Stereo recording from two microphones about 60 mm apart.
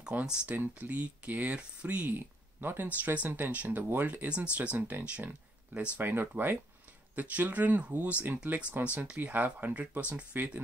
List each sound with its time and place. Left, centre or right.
0.0 s speech: centre
2.0 s speech: right
3.0 s speech: right
3.3 s speech: right
4.4 s speech: right
4.7 s speech: right